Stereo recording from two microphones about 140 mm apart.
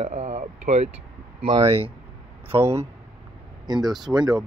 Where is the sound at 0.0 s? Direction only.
55° right (ahead or behind).